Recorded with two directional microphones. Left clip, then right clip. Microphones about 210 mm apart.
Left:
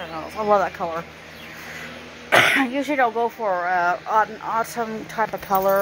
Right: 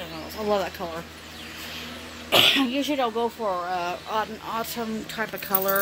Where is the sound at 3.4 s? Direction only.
5° right (ahead or behind).